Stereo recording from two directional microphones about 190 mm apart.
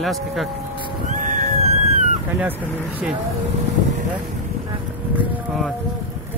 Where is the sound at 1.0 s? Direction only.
40° right (ahead or behind).